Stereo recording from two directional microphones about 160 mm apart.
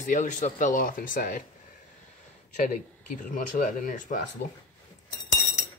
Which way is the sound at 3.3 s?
55° left (ahead or behind).